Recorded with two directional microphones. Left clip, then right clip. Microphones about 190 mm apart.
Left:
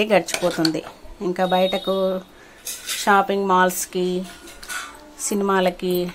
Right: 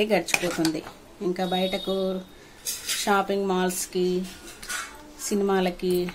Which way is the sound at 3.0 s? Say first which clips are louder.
Left 7 dB; 15° left (ahead or behind).